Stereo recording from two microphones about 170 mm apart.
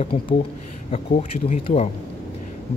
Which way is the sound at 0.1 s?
50° left (ahead or behind).